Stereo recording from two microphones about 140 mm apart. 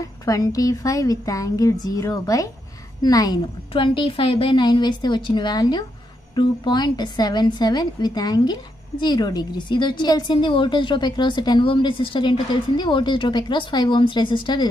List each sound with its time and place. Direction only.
0.0 s a woman's voice: 25° left (ahead or behind)